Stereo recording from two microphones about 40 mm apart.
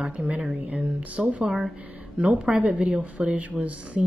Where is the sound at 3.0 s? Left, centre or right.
Right.